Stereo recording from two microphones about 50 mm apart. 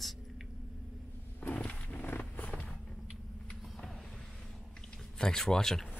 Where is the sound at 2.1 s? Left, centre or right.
Left.